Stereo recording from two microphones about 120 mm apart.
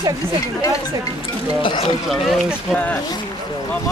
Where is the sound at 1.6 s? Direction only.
45° left (ahead or behind).